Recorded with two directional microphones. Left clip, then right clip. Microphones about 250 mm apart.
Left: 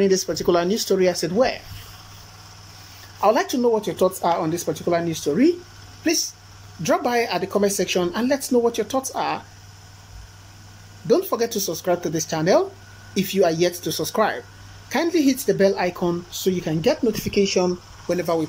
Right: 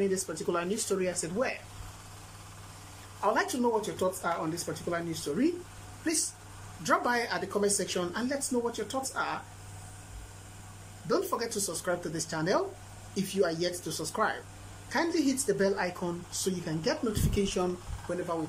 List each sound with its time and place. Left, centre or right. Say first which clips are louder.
0.3 s speech: left 12 dB; left
3.2 s speech: left 10 dB; centre
6.8 s speech: left 8 dB; centre
11.1 s speech: left 10 dB; centre